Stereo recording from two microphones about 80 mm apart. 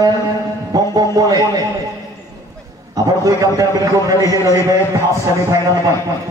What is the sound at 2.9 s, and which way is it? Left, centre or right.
A man's voice, right.